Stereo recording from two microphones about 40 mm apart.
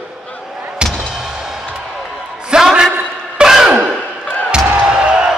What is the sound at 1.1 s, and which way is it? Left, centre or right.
Music, centre.